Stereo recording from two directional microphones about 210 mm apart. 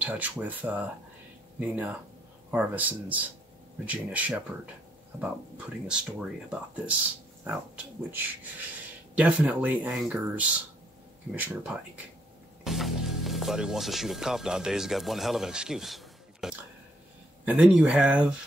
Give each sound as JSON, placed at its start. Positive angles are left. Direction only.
{"t": 0.0, "sound": "speech", "side_deg": -5}
{"t": 7.4, "sound": "speech", "side_deg": -10}